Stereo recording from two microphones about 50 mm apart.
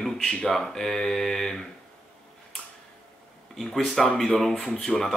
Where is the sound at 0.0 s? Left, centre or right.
Centre.